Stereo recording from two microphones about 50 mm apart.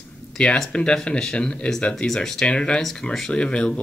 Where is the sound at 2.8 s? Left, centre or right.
Centre.